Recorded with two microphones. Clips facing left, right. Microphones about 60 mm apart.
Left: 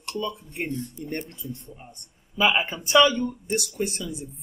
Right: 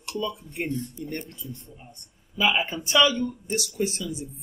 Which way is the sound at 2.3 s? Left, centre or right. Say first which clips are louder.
Left 2 dB; centre.